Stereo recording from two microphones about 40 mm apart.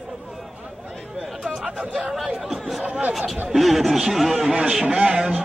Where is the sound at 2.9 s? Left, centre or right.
Right.